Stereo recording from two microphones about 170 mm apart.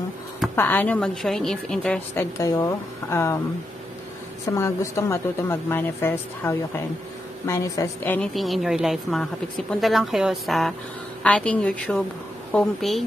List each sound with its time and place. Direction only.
0.6 s speech: 10° left (ahead or behind)
2.3 s speech: 20° left (ahead or behind)
4.5 s speech: 15° left (ahead or behind)
8.3 s speech: centre (ahead or behind)